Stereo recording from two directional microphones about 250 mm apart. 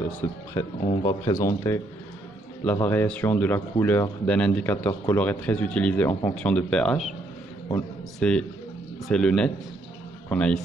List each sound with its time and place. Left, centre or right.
0.2 s speech: centre
8.2 s a man's voice: centre